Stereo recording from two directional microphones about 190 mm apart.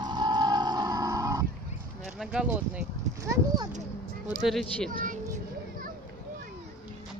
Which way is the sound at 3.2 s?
20° right (ahead or behind).